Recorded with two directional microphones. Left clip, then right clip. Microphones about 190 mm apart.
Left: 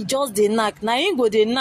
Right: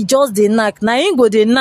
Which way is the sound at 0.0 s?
50° right (ahead or behind).